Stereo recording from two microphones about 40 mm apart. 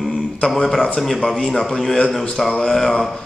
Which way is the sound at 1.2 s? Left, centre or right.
Centre.